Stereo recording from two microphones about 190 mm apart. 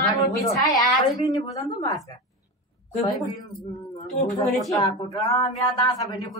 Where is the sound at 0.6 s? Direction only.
20° left (ahead or behind).